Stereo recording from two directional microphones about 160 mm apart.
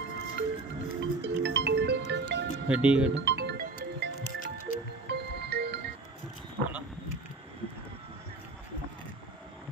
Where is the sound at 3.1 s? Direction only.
90° right.